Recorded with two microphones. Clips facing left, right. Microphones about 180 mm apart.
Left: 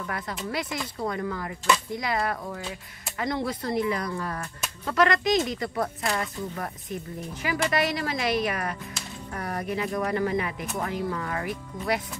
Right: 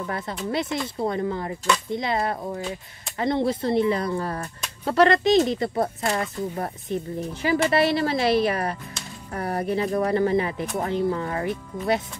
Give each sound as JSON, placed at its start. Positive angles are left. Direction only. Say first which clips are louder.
{"t": 0.0, "sound": "speech", "louder": "right 4 dB", "side_deg": -30}